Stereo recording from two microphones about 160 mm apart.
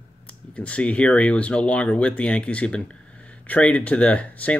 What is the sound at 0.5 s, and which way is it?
Speech, 10° left (ahead or behind).